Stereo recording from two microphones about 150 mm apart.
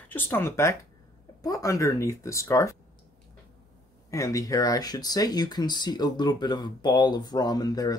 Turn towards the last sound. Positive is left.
turn(degrees=25)  # may be behind; listen again after turning